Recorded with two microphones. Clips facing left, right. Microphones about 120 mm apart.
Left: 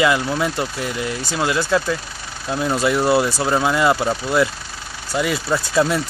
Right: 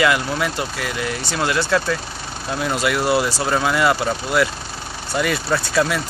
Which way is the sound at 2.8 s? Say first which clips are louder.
Left 2 dB; 25° left (ahead or behind).